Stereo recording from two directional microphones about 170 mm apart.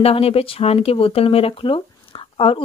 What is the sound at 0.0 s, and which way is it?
Speech, 35° left (ahead or behind).